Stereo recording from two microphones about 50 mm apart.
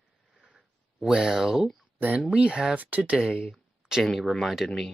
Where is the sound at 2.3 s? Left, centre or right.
Centre.